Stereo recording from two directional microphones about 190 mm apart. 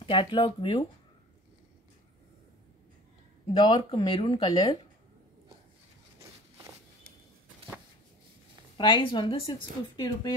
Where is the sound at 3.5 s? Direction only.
30° left (ahead or behind).